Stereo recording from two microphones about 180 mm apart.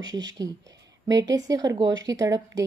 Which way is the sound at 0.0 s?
20° right (ahead or behind).